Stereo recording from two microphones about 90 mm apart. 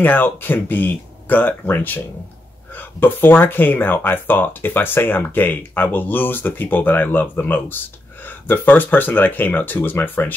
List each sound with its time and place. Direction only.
0.0 s speech: 20° left (ahead or behind)